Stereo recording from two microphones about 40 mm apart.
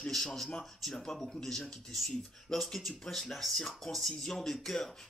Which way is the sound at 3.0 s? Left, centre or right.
Centre.